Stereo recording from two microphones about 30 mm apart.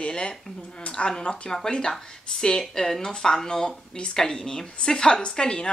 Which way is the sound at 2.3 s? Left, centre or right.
Centre.